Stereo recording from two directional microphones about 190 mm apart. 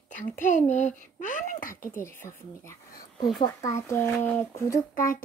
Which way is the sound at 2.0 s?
10° left (ahead or behind).